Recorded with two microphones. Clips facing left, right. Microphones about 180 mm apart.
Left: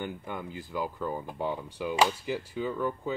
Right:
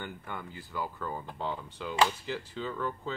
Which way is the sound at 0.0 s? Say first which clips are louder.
Left 4 dB; 15° left (ahead or behind).